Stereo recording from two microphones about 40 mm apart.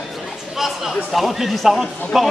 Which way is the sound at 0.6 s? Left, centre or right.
Centre.